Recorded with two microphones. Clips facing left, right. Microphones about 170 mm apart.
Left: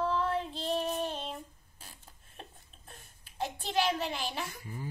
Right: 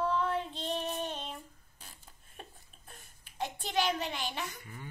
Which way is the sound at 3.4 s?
30° left (ahead or behind).